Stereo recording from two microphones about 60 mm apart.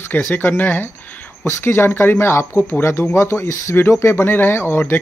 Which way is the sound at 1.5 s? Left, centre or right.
Left.